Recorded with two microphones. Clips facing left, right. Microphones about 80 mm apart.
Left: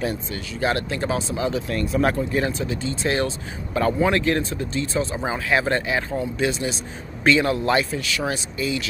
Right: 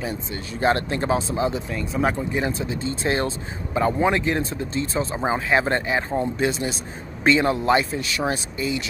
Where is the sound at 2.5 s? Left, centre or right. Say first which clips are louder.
Even; right.